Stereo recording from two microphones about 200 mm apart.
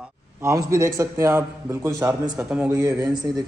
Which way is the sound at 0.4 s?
15° right (ahead or behind).